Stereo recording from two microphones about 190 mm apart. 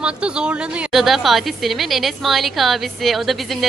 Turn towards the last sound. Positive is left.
turn(degrees=0)  # may be behind; listen again after turning